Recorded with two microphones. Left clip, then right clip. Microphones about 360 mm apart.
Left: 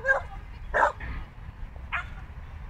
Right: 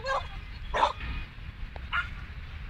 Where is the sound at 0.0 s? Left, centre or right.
Left.